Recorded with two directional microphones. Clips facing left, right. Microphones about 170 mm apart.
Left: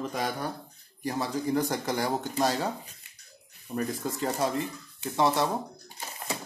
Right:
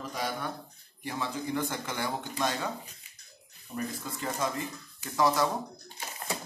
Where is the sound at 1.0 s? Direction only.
35° left (ahead or behind).